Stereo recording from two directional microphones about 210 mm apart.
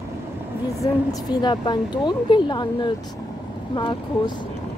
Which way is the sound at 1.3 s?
20° left (ahead or behind).